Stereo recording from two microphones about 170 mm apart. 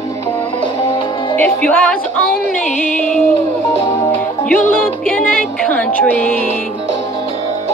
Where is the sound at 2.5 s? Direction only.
45° left (ahead or behind).